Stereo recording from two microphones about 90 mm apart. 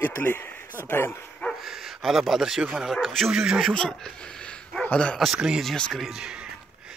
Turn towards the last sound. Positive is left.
turn(degrees=-10)  # may be behind; listen again after turning